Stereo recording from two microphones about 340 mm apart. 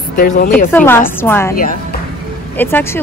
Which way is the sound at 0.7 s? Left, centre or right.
Centre.